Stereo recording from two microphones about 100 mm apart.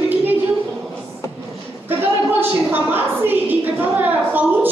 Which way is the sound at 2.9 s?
20° right (ahead or behind).